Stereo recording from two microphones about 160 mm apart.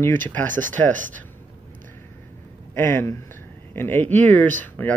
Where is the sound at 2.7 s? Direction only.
15° left (ahead or behind).